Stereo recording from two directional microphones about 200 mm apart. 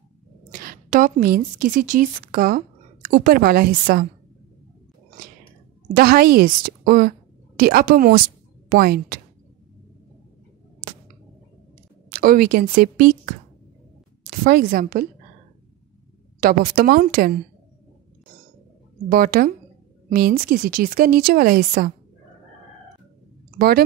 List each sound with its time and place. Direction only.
0.5 s a woman's voice: 45° right (ahead or behind)
5.9 s a woman's voice: 50° right (ahead or behind)
12.1 s speech: 45° right (ahead or behind)
14.4 s speech: 45° right (ahead or behind)
16.3 s speech: 45° right (ahead or behind)
19.0 s speech: 45° right (ahead or behind)